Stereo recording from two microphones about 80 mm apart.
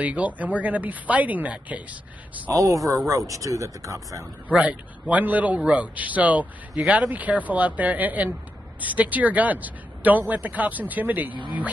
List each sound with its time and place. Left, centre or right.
0.0 s speech: centre
2.5 s speech: right
4.5 s a man's voice: centre